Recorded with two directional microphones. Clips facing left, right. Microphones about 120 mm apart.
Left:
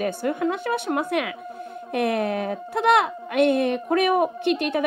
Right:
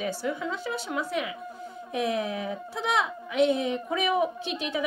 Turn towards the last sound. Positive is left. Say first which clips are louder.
# left 8 dB
turn(degrees=60)  # may be behind; listen again after turning